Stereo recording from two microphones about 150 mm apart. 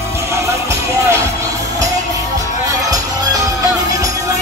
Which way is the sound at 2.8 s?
25° right (ahead or behind).